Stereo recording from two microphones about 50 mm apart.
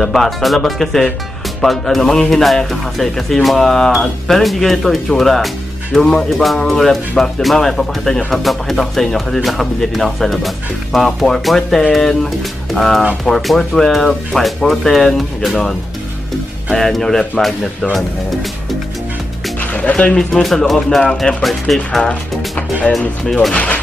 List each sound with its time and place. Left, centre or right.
0.0 s speech: centre
16.7 s speech: centre
19.6 s music: left
20.4 s speech: centre
22.0 s speech: left
23.5 s speech: left